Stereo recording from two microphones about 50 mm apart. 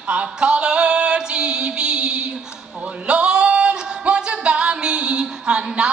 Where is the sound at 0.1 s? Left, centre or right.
Right.